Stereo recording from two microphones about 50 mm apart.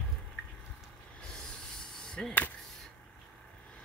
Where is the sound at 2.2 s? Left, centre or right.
Left.